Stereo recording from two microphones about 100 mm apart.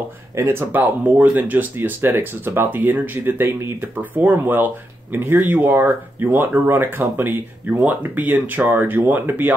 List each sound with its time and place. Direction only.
0.4 s speech: 25° right (ahead or behind)